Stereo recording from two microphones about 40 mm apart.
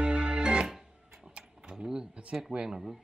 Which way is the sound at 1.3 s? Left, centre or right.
Right.